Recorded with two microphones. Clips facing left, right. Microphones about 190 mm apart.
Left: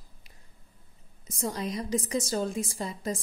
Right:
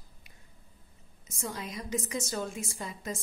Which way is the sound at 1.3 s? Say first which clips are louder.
Left 6 dB; 35° left (ahead or behind).